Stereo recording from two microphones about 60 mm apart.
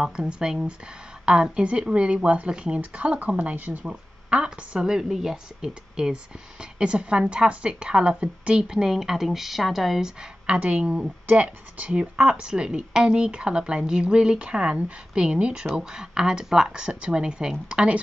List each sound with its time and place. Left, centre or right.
0.0 s speech: centre
3.8 s speech: centre
10.4 s speech: right